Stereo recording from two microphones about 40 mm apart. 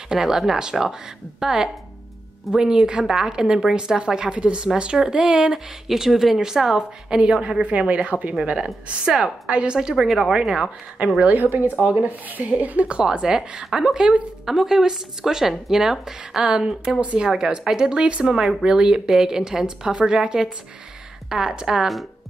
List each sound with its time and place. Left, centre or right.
0.1 s a woman's voice: centre
5.9 s a woman's voice: centre
7.1 s a woman's voice: right
9.9 s speech: centre
10.3 s a woman's voice: centre
11.0 s speech: right
12.4 s a woman's voice: right
13.0 s a woman's voice: centre
16.4 s speech: right
18.3 s speech: centre
18.6 s a woman's voice: right